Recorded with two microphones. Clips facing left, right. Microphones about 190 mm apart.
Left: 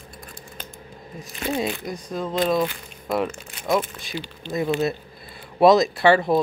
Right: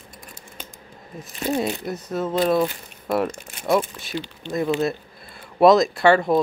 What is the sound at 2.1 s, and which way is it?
Speech, 5° right (ahead or behind).